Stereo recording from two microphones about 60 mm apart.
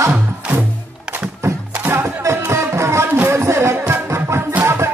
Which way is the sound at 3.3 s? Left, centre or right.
Right.